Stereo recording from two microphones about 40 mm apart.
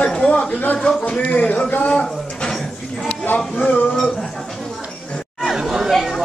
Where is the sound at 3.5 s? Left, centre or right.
Left.